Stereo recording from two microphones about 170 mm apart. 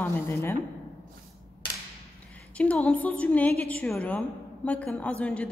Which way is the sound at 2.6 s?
5° left (ahead or behind).